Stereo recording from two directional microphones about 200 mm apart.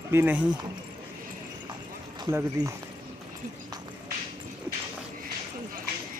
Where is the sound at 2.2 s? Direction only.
15° right (ahead or behind).